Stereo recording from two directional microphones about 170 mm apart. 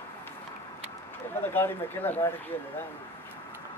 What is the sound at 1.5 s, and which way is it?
Speech, 10° left (ahead or behind).